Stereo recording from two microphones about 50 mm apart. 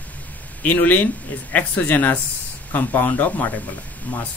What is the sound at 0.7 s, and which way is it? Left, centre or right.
Speech, left.